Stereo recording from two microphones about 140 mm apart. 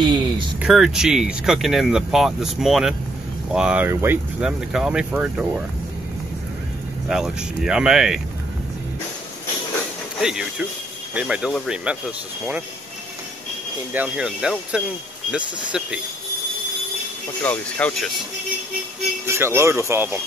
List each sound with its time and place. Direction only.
0.0 s speech: 35° right (ahead or behind)
0.6 s speech: centre (ahead or behind)
7.1 s speech: 5° right (ahead or behind)
10.2 s speech: 5° right (ahead or behind)
13.9 s speech: 5° right (ahead or behind)
17.4 s speech: 10° left (ahead or behind)
19.2 s speech: 20° right (ahead or behind)